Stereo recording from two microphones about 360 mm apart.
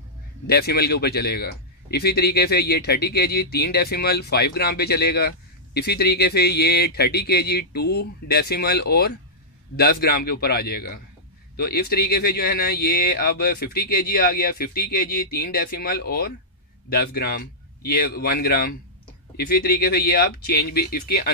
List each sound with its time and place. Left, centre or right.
0.5 s speech: left